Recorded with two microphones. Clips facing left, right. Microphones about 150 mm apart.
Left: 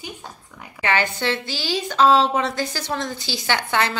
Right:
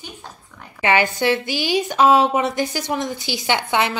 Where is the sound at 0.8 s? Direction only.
15° right (ahead or behind).